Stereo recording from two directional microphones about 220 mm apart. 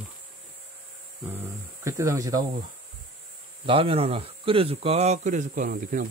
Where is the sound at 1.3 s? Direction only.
10° right (ahead or behind).